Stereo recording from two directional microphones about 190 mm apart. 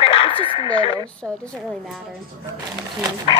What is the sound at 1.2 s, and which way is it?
Speech, 5° right (ahead or behind).